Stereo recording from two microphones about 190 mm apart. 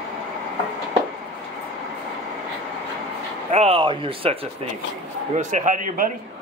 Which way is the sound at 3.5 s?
35° right (ahead or behind).